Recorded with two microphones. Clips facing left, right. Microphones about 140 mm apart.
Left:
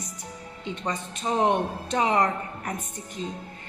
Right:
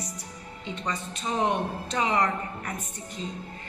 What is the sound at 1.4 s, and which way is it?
A woman's voice, 50° left (ahead or behind).